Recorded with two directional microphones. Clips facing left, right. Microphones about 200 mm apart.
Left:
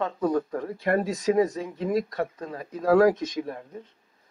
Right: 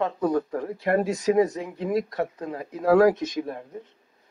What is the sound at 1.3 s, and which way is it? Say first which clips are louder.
Speech: right 1 dB; 15° right (ahead or behind).